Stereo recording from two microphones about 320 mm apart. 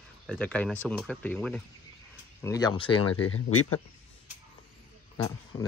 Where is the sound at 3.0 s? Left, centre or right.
Left.